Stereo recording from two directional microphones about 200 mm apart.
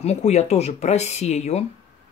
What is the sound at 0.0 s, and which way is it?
Speech, 35° left (ahead or behind).